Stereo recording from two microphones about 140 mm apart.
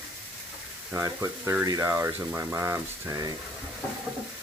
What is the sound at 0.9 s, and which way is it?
Speech, 20° right (ahead or behind).